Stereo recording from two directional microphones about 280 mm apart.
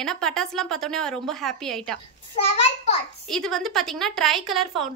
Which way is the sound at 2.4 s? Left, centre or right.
Left.